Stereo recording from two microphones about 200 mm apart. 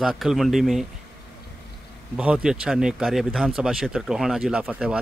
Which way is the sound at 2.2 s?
5° right (ahead or behind).